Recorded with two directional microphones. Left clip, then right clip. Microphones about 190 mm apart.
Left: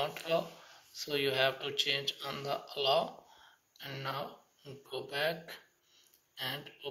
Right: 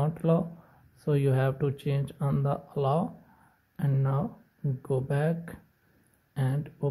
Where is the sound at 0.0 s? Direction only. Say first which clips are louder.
Right 4 dB; 50° right (ahead or behind).